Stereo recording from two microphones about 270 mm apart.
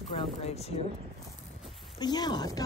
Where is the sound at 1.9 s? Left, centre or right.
Centre.